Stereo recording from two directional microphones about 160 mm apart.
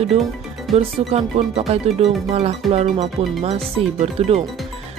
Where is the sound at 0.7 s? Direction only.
40° right (ahead or behind).